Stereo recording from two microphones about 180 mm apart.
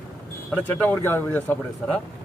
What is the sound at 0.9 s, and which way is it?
Speech, 10° left (ahead or behind).